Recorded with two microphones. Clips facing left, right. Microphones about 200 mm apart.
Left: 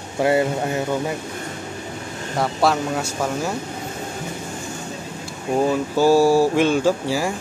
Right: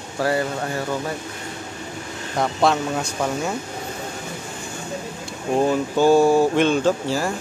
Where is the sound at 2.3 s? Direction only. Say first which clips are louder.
Even; 5° left (ahead or behind).